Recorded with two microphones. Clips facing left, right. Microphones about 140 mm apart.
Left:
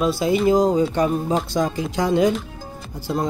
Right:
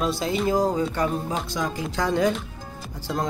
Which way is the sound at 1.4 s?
35° left (ahead or behind).